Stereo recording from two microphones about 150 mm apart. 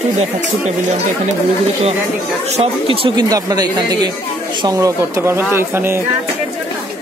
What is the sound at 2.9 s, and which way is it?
Speech, 40° right (ahead or behind).